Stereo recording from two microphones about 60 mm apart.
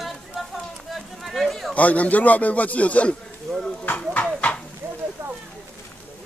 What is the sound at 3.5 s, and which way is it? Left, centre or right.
Speech, centre.